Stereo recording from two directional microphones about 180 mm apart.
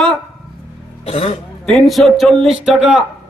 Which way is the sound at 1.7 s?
Centre (ahead or behind).